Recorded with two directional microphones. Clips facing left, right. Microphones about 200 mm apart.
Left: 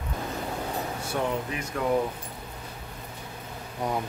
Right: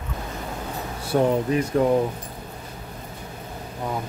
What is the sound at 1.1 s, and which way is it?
Speech, 35° right (ahead or behind).